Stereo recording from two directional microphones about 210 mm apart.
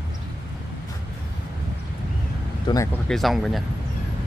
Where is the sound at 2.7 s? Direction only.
20° left (ahead or behind).